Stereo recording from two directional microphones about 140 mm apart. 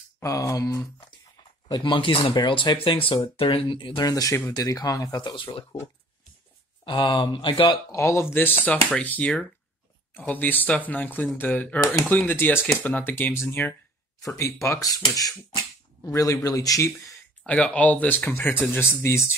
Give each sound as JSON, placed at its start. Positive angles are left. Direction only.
{"t": 0.2, "sound": "speech", "side_deg": 25}
{"t": 1.7, "sound": "speech", "side_deg": 35}
{"t": 6.8, "sound": "speech", "side_deg": 35}
{"t": 7.9, "sound": "speech", "side_deg": 20}
{"t": 17.5, "sound": "speech", "side_deg": 10}